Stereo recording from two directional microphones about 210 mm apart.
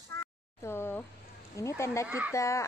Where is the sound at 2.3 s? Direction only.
15° left (ahead or behind).